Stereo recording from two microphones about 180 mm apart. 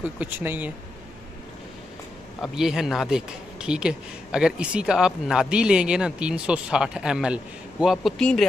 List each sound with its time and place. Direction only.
0.0 s speech: 10° right (ahead or behind)
2.4 s speech: 5° right (ahead or behind)